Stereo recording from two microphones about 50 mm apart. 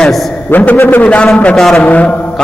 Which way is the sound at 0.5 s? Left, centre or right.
Left.